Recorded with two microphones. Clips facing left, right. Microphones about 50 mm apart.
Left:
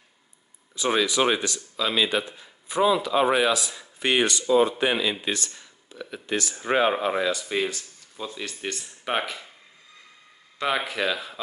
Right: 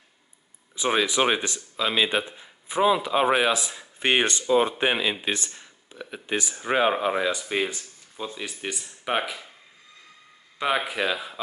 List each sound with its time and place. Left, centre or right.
0.7 s speech: right
6.5 s speech: centre
7.2 s speech: centre
8.4 s speech: centre
10.6 s speech: centre